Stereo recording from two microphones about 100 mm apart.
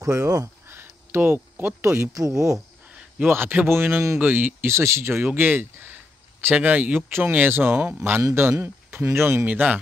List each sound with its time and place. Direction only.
0.0 s speech: 35° right (ahead or behind)
0.7 s a sound: 25° right (ahead or behind)
1.9 s speech: 30° right (ahead or behind)
2.9 s a man's voice: 15° right (ahead or behind)
8.2 s speech: 25° right (ahead or behind)